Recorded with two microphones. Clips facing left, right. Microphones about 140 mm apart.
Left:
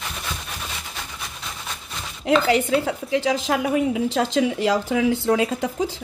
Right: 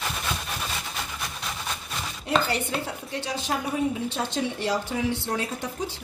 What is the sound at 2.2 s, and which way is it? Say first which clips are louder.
A woman's voice: left 7 dB; 90° left.